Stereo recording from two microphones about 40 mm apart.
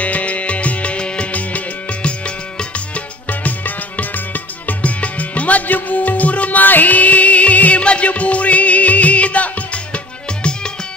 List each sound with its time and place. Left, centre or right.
0.0 s music: left
1.3 s music: left